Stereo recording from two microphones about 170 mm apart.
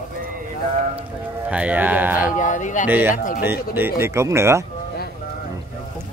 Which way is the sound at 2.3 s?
50° left (ahead or behind).